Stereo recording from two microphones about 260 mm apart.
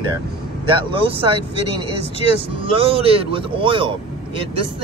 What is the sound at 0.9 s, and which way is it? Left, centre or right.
Speech, right.